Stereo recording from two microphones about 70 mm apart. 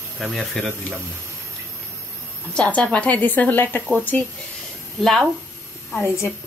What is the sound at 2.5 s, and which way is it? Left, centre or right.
A woman's voice, centre.